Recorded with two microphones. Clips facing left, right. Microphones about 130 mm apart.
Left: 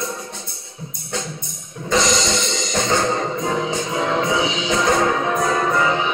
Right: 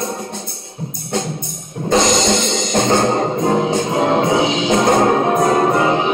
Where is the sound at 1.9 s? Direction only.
55° right (ahead or behind).